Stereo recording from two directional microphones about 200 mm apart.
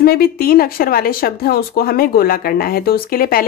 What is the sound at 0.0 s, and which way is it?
Speech, 50° left (ahead or behind).